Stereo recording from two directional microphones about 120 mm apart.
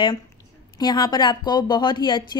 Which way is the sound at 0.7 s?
35° left (ahead or behind).